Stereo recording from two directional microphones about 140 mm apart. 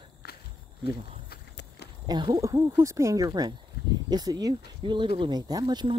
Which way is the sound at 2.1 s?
30° right (ahead or behind).